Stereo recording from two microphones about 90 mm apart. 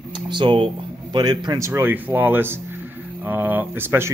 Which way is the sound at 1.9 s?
20° right (ahead or behind).